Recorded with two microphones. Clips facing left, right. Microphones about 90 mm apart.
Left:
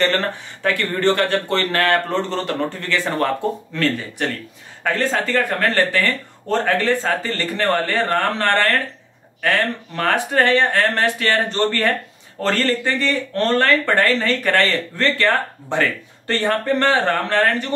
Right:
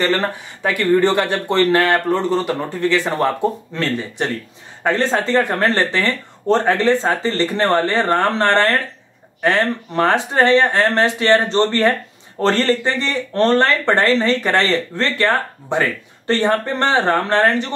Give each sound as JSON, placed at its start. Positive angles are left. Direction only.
{"t": 0.6, "sound": "speech", "side_deg": -20}